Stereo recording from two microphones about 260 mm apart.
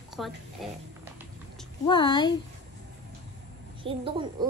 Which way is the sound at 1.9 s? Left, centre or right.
Centre.